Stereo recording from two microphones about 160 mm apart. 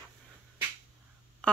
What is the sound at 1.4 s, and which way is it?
Duck, 5° left (ahead or behind).